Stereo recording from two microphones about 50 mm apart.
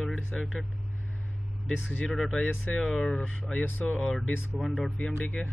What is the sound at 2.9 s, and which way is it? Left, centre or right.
Speech, centre.